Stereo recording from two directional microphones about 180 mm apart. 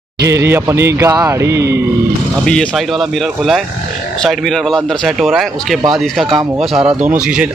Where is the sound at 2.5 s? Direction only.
5° left (ahead or behind).